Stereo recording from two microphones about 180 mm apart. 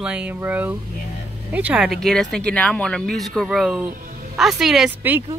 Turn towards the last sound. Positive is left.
turn(degrees=-10)  # may be behind; listen again after turning